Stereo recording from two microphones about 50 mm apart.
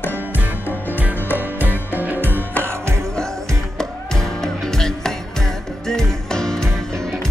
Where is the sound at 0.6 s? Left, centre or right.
Left.